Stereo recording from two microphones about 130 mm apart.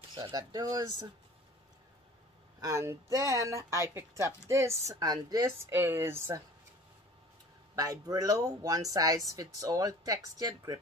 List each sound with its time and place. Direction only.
0.3 s speech: 30° right (ahead or behind)
2.6 s speech: 20° right (ahead or behind)
7.7 s speech: 30° right (ahead or behind)